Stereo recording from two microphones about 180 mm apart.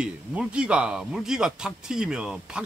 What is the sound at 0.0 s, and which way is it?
Speech, 5° right (ahead or behind).